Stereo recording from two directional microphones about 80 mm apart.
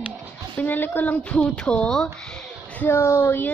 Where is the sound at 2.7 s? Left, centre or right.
Left.